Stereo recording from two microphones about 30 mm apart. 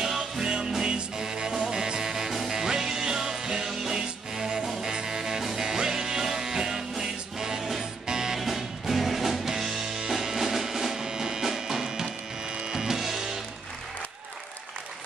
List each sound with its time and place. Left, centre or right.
0.0 s music: right
8.4 s music: centre
11.1 s music: right
12.4 s music: right
12.7 s music: centre